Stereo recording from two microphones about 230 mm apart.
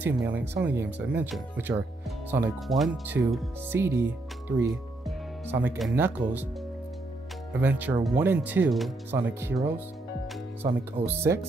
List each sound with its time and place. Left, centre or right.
0.0 s speech: centre
5.0 s speech: centre
7.6 s speech: centre
10.6 s speech: right
11.1 s speech: centre